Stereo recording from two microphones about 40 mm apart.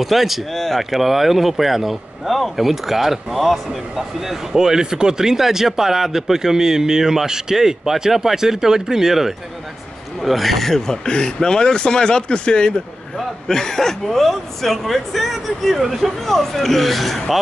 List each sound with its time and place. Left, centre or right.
0.0 s speech: centre
11.1 s speech: centre
13.5 s speech: centre
15.7 s speech: centre
16.2 s speech: centre